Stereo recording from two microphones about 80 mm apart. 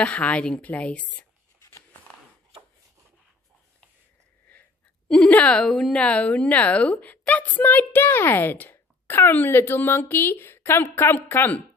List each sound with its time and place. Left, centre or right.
0.0 s a woman's voice: centre
1.6 s a sound: left
5.0 s a woman's voice: centre